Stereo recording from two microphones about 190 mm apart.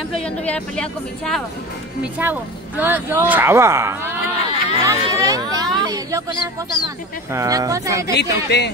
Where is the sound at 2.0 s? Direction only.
10° right (ahead or behind).